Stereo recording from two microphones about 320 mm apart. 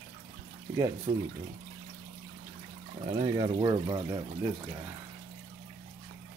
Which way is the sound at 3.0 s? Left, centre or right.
Centre.